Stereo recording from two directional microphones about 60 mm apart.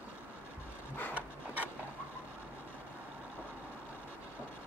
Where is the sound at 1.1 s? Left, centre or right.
Right.